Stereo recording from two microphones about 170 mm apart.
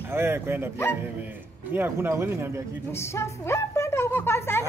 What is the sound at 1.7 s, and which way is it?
Speech, 15° right (ahead or behind).